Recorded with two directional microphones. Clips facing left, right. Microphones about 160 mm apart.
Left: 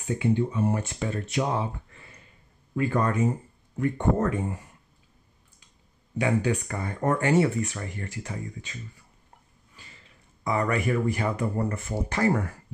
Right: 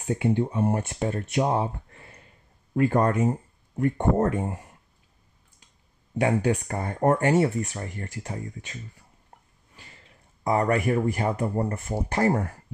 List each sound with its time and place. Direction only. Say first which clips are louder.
0.1 s speech: right 1 dB; 50° right (ahead or behind)
1.5 s a sound: right 3 dB; 45° right (ahead or behind)
2.9 s speech: even; 50° right (ahead or behind)
6.1 s speech: right 2 dB; 55° right (ahead or behind)
6.8 s speech: right 5 dB; 40° right (ahead or behind)
10.4 s speech: right 3 dB; 45° right (ahead or behind)